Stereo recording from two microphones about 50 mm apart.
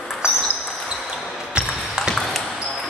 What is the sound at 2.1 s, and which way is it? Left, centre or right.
Ping, centre.